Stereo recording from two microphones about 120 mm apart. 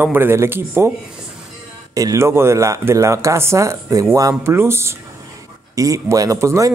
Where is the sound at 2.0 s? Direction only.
25° right (ahead or behind).